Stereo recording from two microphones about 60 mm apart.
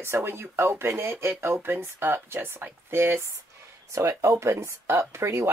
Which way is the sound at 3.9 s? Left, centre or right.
Right.